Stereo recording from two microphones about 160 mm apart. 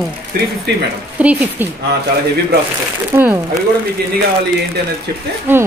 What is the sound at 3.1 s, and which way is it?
Speech, 10° right (ahead or behind).